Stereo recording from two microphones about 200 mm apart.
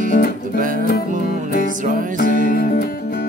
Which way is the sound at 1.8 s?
40° right (ahead or behind).